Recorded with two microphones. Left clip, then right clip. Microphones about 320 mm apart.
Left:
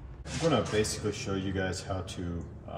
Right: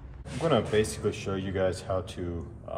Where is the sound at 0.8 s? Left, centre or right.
Centre.